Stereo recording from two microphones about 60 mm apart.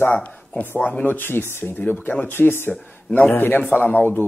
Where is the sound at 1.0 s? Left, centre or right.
Left.